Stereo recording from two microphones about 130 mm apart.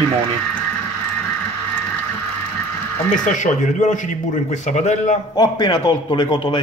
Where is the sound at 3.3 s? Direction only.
70° left (ahead or behind).